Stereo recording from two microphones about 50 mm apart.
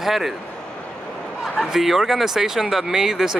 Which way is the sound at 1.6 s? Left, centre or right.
Centre.